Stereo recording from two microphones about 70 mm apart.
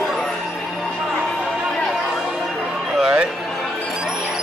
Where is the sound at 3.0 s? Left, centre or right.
Centre.